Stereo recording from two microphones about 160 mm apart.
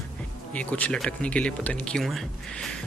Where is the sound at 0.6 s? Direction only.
10° left (ahead or behind).